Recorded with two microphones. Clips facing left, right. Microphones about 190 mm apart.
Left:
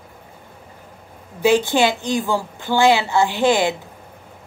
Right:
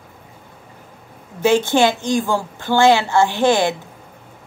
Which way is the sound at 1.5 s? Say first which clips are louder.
Right 2 dB; 15° left (ahead or behind).